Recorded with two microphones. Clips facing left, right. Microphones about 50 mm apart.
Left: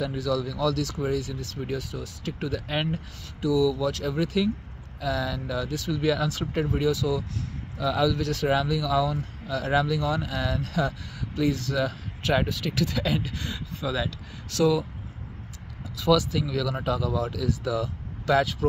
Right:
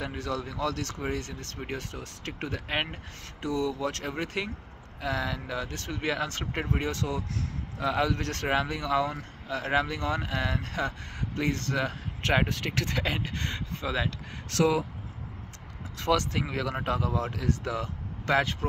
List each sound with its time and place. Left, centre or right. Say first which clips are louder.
0.0 s speech: left 6 dB; right
3.3 s speech: left 7 dB; right
6.9 s speech: left 6 dB; right
9.5 s speech: left 3 dB; right
12.4 s speech: left 3 dB; right
13.8 s speech: left 2 dB; right
14.6 s speech: left 2 dB; right
16.1 s speech: left 4 dB; right